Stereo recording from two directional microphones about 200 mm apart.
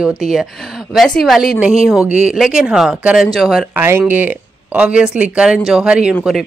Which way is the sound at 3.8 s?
10° right (ahead or behind).